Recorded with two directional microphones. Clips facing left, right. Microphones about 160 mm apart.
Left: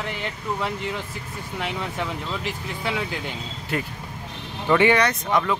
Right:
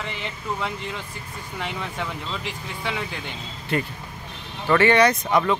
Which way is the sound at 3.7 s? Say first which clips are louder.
Right 3 dB; 5° left (ahead or behind).